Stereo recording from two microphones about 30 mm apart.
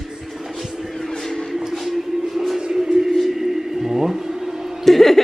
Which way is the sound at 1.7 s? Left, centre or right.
Centre.